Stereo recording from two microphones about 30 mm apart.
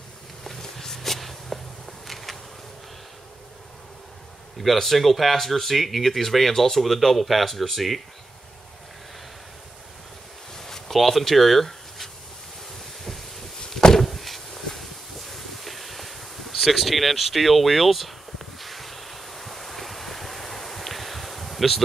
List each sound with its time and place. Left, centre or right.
0.6 s walk: centre
2.0 s bee: centre
4.6 s speech: centre
10.5 s a sound: centre
10.9 s speech: centre
14.0 s a sound: centre